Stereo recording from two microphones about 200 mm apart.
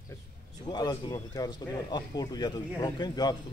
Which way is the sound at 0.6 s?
20° left (ahead or behind).